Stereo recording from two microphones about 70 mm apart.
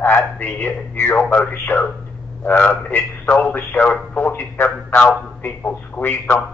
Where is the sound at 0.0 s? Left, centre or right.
Left.